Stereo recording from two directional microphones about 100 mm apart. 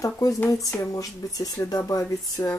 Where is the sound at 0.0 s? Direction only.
35° left (ahead or behind).